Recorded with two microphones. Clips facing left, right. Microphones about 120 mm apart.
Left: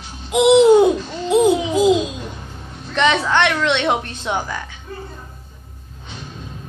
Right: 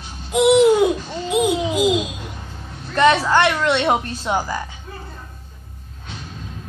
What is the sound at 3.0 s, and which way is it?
A woman's voice, 5° right (ahead or behind).